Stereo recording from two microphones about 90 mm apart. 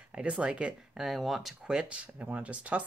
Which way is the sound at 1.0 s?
Centre (ahead or behind).